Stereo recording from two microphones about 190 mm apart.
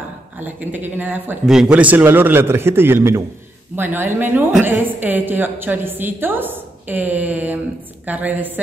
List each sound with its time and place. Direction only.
0.4 s a woman's voice: 10° right (ahead or behind)